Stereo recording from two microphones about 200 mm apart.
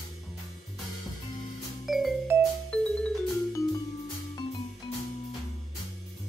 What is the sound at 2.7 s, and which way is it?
Music, 5° left (ahead or behind).